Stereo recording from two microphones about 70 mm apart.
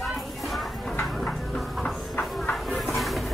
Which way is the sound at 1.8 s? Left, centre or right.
Centre.